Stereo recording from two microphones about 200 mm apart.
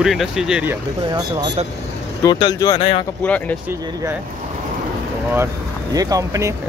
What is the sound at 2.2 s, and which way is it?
Speech, 20° left (ahead or behind).